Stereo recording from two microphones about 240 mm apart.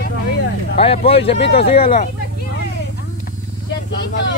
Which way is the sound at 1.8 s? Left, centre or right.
Left.